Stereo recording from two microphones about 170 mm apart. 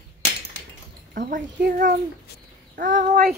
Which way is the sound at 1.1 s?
50° right (ahead or behind).